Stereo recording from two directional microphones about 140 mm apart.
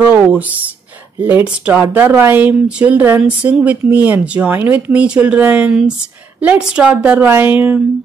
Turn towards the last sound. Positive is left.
turn(degrees=-10)  # may be behind; listen again after turning